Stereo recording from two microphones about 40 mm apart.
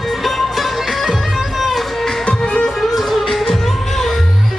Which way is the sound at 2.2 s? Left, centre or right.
Left.